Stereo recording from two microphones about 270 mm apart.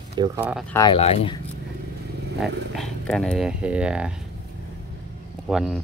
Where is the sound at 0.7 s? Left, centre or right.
Centre.